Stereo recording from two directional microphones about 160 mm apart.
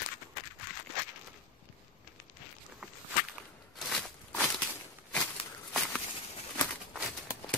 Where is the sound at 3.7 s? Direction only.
Centre (ahead or behind).